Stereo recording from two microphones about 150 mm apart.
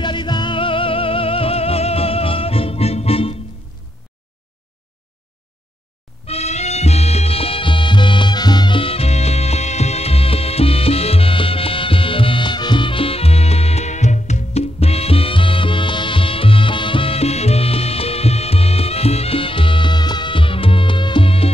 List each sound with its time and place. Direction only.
0.0 s music: 30° left (ahead or behind)
6.2 s music: 45° left (ahead or behind)